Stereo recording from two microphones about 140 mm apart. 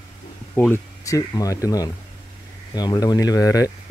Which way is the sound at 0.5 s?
15° left (ahead or behind).